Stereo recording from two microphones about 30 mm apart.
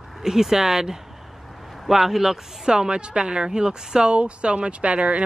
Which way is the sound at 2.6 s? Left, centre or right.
Right.